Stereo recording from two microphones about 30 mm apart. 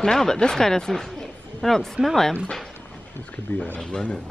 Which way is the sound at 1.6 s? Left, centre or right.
Centre.